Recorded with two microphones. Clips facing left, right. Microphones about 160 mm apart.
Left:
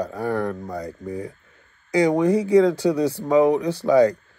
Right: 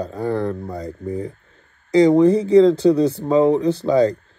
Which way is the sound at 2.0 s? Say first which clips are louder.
Right 6 dB; 30° right (ahead or behind).